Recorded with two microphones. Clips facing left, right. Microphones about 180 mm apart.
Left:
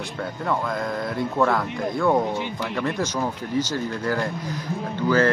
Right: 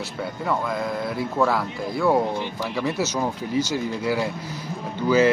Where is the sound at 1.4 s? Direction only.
5° right (ahead or behind).